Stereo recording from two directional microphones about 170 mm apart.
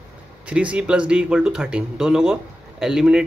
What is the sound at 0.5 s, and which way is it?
Speech, 5° right (ahead or behind).